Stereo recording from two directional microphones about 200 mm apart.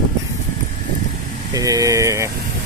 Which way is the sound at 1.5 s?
15° right (ahead or behind).